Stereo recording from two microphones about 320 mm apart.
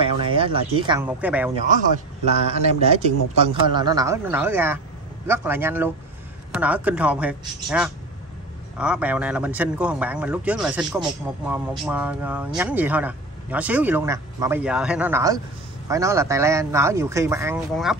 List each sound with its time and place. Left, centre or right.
0.0 s speech: centre
1.7 s speech: right; by 17.9 s centre